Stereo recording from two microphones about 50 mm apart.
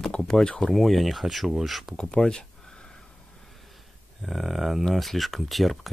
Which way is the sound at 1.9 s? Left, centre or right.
Centre.